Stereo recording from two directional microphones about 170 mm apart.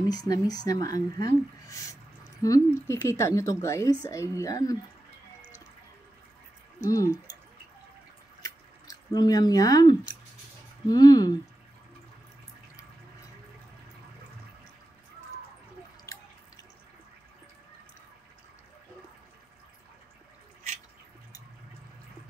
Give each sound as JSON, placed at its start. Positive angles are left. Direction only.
{"t": 0.1, "sound": "a woman's voice", "side_deg": 20}
{"t": 6.9, "sound": "speech", "side_deg": 20}
{"t": 8.4, "sound": "squish", "side_deg": 20}
{"t": 10.9, "sound": "speech", "side_deg": 25}